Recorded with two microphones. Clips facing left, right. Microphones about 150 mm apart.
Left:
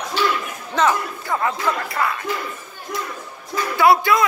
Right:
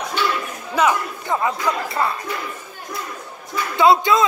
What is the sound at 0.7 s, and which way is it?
Speech, 10° right (ahead or behind).